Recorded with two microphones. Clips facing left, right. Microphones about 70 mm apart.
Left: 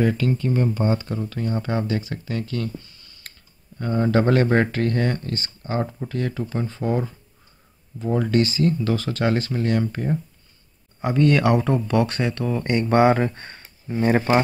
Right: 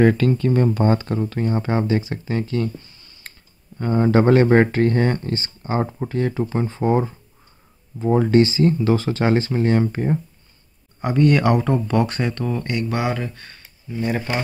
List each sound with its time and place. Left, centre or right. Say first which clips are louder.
0.0 s speech: right 5 dB; right
1.3 s speech: right 2 dB; right
11.0 s speech: right 1 dB; centre
12.6 s speech: left 10 dB; left